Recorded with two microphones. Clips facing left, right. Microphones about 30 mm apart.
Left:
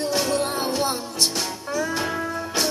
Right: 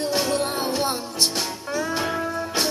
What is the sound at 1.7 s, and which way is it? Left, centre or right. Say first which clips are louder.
Music: left 1 dB; right.